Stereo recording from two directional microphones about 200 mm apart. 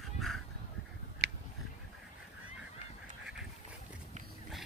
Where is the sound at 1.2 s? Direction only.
55° right (ahead or behind).